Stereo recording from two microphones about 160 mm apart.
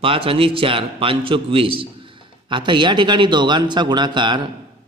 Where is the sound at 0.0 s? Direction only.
35° right (ahead or behind).